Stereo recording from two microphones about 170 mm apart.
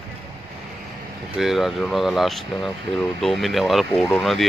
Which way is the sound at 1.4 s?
Centre (ahead or behind).